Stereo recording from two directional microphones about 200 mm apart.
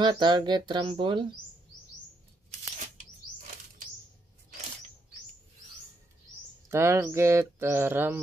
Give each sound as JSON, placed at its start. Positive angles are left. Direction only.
{"t": 0.0, "sound": "speech", "side_deg": -20}
{"t": 6.7, "sound": "speech", "side_deg": -15}